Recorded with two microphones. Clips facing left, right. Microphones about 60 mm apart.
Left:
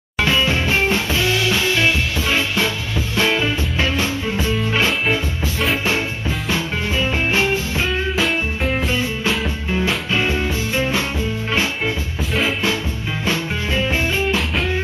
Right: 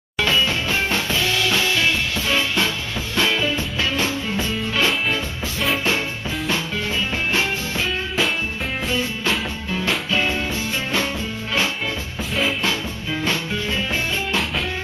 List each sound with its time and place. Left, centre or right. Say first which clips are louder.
0.2 s music: left 2 dB; left
3.2 s music: left 2 dB; left
14.3 s music: left 2 dB; centre